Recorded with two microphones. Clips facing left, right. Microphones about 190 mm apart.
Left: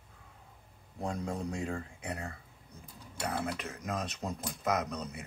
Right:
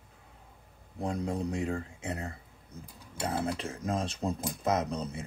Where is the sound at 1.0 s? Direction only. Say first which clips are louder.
Right 3 dB; 25° right (ahead or behind).